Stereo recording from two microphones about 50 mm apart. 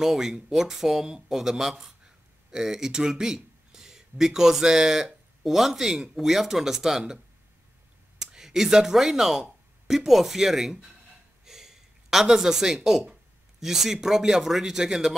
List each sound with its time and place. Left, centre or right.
0.0 s speech: centre
8.2 s speech: centre
11.4 s a sound: centre
14.0 s speech: centre